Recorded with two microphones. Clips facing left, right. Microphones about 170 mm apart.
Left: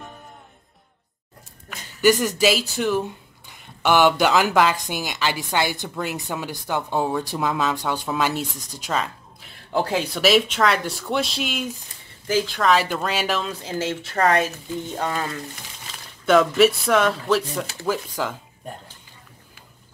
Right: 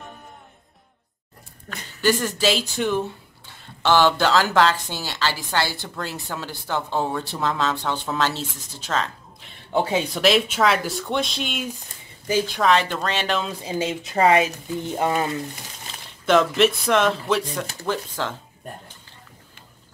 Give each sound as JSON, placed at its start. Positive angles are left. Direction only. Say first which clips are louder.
{"t": 2.0, "sound": "speech", "louder": "left 4 dB", "side_deg": 10}
{"t": 3.4, "sound": "speech", "louder": "even", "side_deg": 15}
{"t": 12.6, "sound": "speech", "louder": "even", "side_deg": 5}
{"t": 13.5, "sound": "speech", "louder": "right 1 dB", "side_deg": -10}
{"t": 15.0, "sound": "frying", "louder": "right 5 dB", "side_deg": -20}
{"t": 16.3, "sound": "speech", "louder": "left 2 dB", "side_deg": 0}